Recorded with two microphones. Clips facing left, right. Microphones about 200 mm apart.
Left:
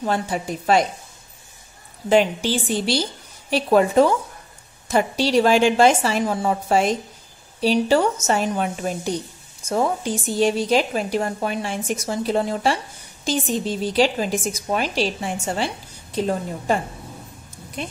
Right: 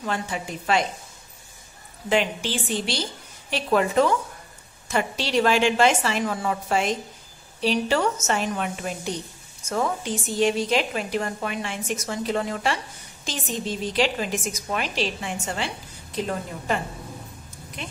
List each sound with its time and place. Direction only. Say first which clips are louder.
0.0 s speech: left 5 dB; 40° left (ahead or behind)
2.0 s speech: left 6 dB; 40° left (ahead or behind)